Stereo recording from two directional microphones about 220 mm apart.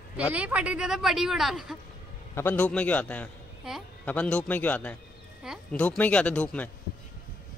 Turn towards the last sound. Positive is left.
turn(degrees=5)  # may be behind; listen again after turning